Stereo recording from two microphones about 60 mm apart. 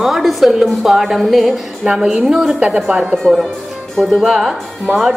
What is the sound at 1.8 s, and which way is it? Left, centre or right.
A woman's voice, centre.